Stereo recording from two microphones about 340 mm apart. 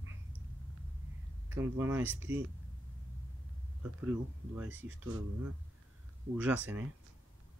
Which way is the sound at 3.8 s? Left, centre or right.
Centre.